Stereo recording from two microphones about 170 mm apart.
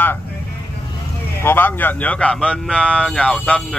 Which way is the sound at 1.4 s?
15° left (ahead or behind).